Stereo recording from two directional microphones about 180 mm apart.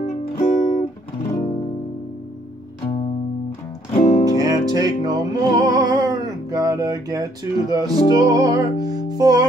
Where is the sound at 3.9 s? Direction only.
40° left (ahead or behind).